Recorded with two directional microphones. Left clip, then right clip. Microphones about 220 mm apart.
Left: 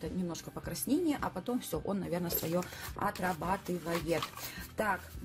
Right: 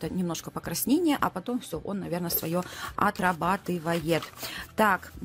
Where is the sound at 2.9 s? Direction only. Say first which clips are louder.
Right 9 dB; 45° right (ahead or behind).